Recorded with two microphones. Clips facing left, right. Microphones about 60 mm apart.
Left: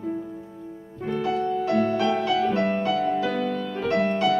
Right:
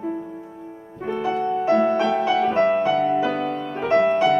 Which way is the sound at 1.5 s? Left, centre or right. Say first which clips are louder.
Right 7 dB; right.